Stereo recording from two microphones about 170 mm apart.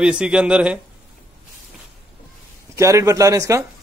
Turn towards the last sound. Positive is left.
turn(degrees=-20)  # may be behind; listen again after turning